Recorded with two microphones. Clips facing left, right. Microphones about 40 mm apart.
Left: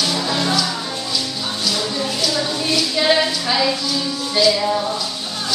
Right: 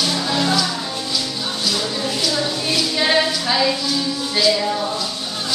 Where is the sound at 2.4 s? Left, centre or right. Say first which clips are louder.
Left 1 dB; centre.